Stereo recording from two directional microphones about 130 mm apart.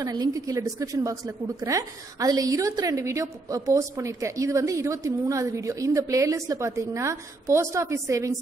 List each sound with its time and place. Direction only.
0.0 s a woman's voice: 30° right (ahead or behind)